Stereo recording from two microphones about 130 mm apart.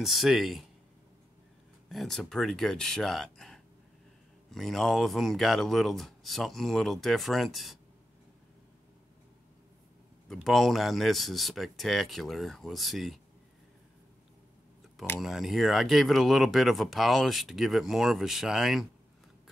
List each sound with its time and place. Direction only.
0.0 s speech: centre (ahead or behind)
1.9 s speech: centre (ahead or behind)
10.3 s speech: centre (ahead or behind)
15.1 s speech: centre (ahead or behind)